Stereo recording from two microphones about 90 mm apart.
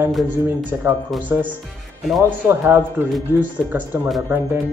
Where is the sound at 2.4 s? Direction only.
25° right (ahead or behind).